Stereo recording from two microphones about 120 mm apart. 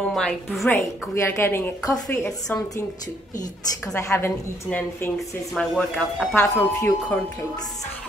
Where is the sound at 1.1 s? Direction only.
20° left (ahead or behind).